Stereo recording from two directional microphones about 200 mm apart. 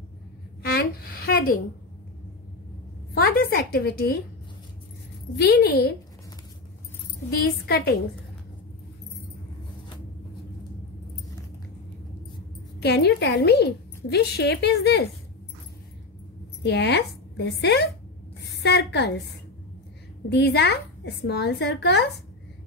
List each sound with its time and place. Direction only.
0.6 s speech: 50° left (ahead or behind)
3.2 s a woman's voice: 50° left (ahead or behind)
5.4 s a woman's voice: 55° left (ahead or behind)
7.6 s a woman's voice: 50° left (ahead or behind)
12.8 s a woman's voice: 55° left (ahead or behind)
16.6 s a woman's voice: 55° left (ahead or behind)
20.2 s a woman's voice: 55° left (ahead or behind)